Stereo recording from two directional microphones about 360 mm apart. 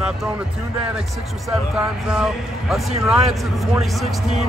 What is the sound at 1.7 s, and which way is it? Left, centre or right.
Speech, centre.